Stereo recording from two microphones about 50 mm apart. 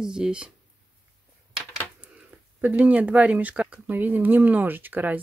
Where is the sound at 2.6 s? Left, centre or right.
Right.